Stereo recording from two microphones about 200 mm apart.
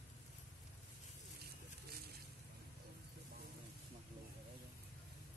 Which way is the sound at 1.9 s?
50° right (ahead or behind).